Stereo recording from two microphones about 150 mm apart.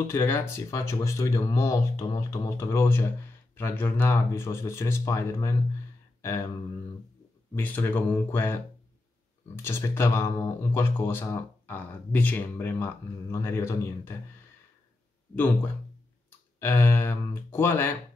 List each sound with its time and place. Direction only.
0.1 s speech: 15° left (ahead or behind)
7.5 s speech: 15° left (ahead or behind)
9.6 s speech: 15° left (ahead or behind)
15.3 s speech: 10° left (ahead or behind)